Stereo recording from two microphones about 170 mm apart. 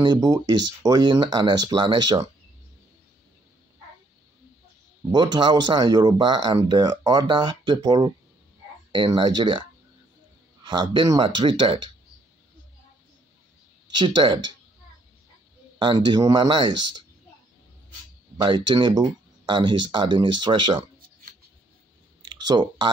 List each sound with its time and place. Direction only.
0.0 s speech: 25° right (ahead or behind)
5.1 s speech: 25° right (ahead or behind)
13.9 s speech: 30° right (ahead or behind)
15.8 s speech: 30° right (ahead or behind)
18.7 s speech: 25° right (ahead or behind)
22.2 s clicking: 25° right (ahead or behind)